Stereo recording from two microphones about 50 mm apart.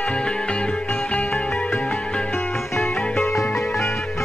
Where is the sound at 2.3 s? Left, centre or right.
Left.